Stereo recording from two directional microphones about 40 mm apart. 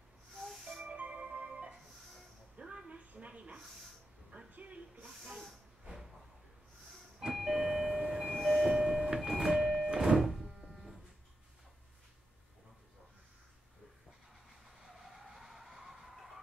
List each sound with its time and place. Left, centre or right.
0.8 s music: right
2.6 s a sound: right
3.2 s a sound: right
7.2 s doorbell: centre
8.0 s train: centre
9.3 s music: centre
10.1 s music: centre
14.9 s skidding: centre